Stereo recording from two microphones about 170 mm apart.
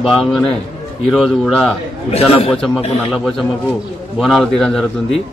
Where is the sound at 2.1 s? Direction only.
35° left (ahead or behind).